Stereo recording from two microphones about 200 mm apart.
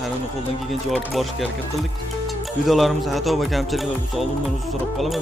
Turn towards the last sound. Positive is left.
turn(degrees=0)  # may be behind; listen again after turning